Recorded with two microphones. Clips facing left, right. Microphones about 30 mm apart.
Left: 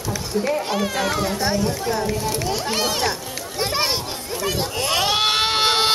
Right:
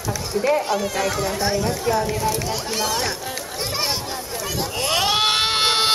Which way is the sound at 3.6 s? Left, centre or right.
Centre.